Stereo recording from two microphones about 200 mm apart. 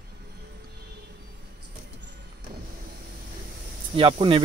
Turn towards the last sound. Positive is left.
turn(degrees=-25)  # may be behind; listen again after turning